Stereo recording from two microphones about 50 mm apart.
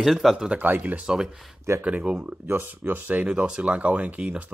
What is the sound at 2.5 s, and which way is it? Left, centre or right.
Speech, right.